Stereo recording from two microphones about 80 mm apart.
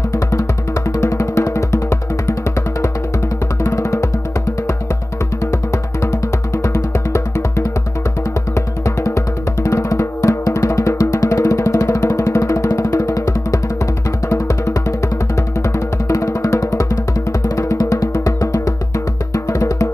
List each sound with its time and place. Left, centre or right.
0.1 s music: left
3.6 s music: left
5.4 s music: left